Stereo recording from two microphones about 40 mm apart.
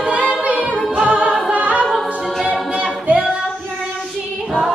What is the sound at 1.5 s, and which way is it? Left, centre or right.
A capella, right.